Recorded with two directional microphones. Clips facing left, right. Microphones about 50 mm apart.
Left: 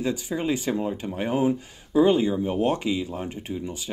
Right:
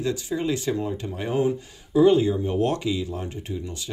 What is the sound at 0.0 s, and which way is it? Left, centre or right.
Speech, centre.